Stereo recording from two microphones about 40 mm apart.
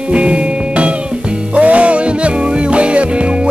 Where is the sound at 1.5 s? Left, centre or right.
Right.